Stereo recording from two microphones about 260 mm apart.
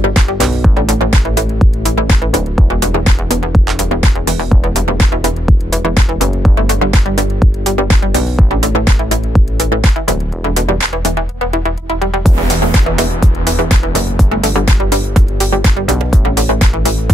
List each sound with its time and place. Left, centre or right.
0.4 s music: centre
14.8 s music: centre